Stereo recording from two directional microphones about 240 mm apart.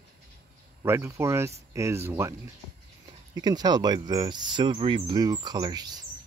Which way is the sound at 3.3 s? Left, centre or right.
Centre.